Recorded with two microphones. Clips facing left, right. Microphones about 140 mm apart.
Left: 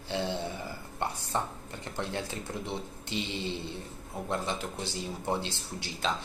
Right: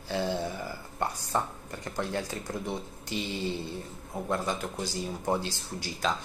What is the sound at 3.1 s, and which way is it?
Speech, 25° left (ahead or behind).